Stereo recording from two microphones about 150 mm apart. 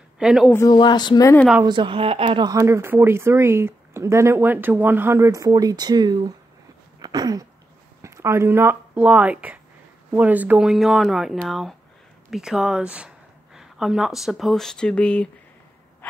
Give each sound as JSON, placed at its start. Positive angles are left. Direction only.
{"t": 0.2, "sound": "speech", "side_deg": -5}
{"t": 0.7, "sound": "speech", "side_deg": 30}
{"t": 1.6, "sound": "speech", "side_deg": -30}
{"t": 7.0, "sound": "a sound", "side_deg": -25}
{"t": 8.0, "sound": "speech", "side_deg": -20}